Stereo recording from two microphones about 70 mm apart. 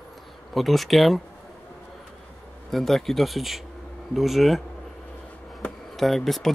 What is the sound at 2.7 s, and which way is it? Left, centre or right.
Speech, centre.